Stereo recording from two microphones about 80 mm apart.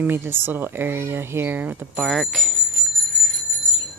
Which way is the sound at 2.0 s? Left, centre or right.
Centre.